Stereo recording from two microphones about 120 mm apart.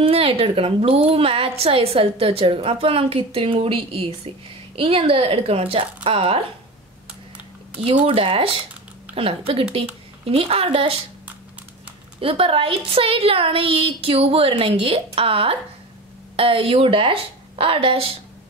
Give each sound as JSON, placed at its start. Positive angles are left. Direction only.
{"t": 0.0, "sound": "a woman's voice", "side_deg": -55}
{"t": 8.1, "sound": "a woman's voice", "side_deg": -50}
{"t": 9.5, "sound": "a woman's voice", "side_deg": -50}
{"t": 12.2, "sound": "a woman's voice", "side_deg": -50}